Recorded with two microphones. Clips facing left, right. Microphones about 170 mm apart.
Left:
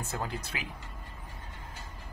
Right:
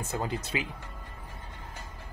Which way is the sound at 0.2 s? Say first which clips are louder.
Right 5 dB; 20° right (ahead or behind).